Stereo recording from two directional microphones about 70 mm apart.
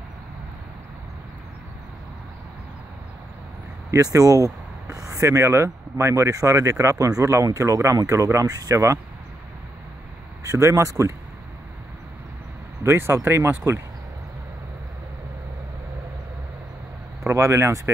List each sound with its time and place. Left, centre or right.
3.9 s speech: right
10.4 s speech: right
12.8 s speech: right
17.3 s speech: right